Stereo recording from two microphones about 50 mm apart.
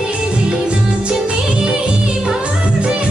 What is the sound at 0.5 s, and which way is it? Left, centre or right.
Music, right.